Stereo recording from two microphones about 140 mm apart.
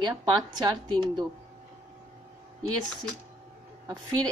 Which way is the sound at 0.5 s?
30° right (ahead or behind).